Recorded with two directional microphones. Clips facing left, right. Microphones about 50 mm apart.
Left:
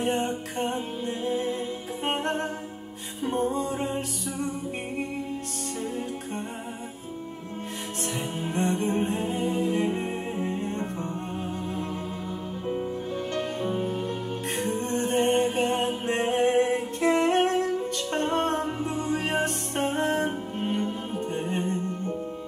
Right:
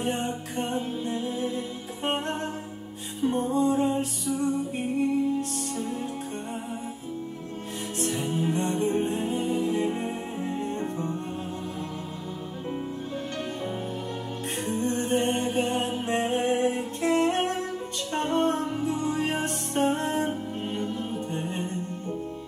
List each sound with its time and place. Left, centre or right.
0.0 s music: left
8.5 s music: left
14.7 s music: left
21.3 s music: left